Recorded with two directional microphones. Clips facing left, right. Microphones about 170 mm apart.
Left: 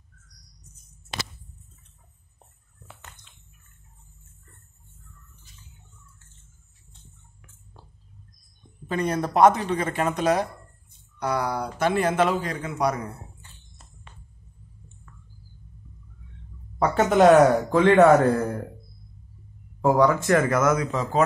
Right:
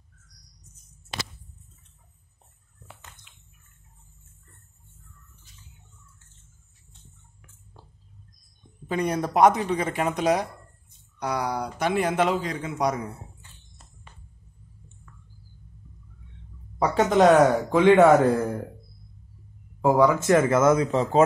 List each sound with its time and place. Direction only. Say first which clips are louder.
8.8 s speech: even; 15° right (ahead or behind)
16.7 s speech: left 1 dB; centre (ahead or behind)
19.8 s speech: even; 5° right (ahead or behind)
20.2 s speech: right 2 dB; 20° right (ahead or behind)